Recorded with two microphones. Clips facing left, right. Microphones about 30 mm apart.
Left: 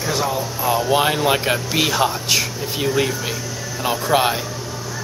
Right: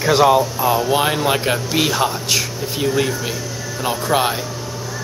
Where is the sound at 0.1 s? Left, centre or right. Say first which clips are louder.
Right 10 dB; right.